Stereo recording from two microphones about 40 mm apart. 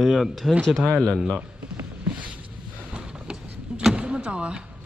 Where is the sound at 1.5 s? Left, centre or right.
Right.